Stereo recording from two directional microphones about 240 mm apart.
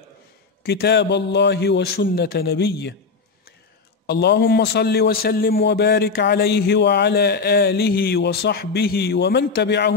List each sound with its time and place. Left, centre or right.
0.7 s a man's voice: left
4.0 s a man's voice: left